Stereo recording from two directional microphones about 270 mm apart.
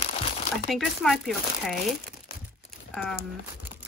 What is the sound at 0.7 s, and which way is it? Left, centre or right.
Speech, centre.